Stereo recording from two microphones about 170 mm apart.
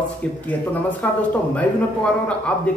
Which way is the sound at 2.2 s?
5° left (ahead or behind).